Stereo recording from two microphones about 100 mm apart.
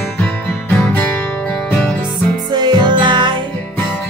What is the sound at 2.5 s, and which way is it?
Music, 45° right (ahead or behind).